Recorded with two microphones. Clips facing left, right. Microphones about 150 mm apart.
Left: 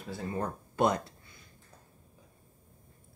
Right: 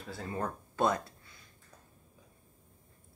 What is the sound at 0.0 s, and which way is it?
Speech, 15° left (ahead or behind).